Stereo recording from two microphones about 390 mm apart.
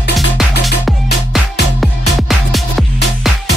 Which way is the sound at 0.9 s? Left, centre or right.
Centre.